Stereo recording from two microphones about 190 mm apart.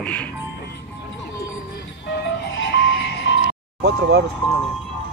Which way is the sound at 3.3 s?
70° left (ahead or behind).